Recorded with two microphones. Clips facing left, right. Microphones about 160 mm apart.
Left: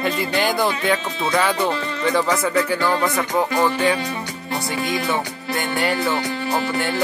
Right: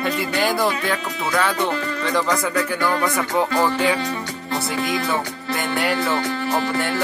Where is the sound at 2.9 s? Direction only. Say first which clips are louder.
Left 1 dB; 20° left (ahead or behind).